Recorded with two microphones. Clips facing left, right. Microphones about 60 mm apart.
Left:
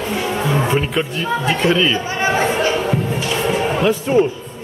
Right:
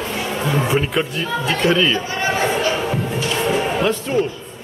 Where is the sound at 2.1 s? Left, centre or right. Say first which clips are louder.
Left 2 dB; left.